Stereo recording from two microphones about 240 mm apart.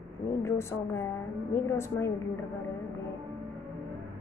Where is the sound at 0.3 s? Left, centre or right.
Centre.